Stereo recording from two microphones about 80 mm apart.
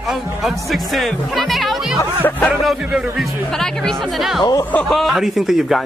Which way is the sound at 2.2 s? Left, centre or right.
Left.